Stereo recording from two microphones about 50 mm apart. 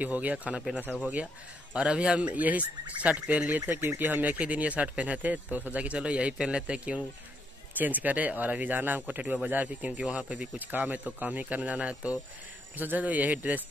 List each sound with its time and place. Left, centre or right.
0.0 s speech: right
7.7 s speech: right
10.6 s speech: right
12.7 s speech: right